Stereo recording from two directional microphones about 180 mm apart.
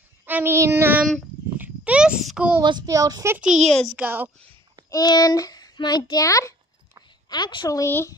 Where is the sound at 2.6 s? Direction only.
20° right (ahead or behind).